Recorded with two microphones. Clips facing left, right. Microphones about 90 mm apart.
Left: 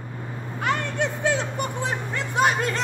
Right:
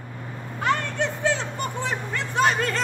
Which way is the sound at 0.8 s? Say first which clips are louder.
Even; 15° left (ahead or behind).